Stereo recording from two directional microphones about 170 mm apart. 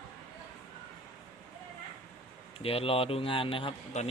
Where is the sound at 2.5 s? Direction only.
35° left (ahead or behind).